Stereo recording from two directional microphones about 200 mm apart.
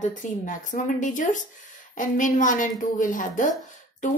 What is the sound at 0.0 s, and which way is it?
Speech, 40° left (ahead or behind).